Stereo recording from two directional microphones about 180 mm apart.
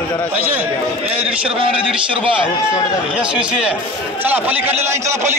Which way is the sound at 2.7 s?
20° left (ahead or behind).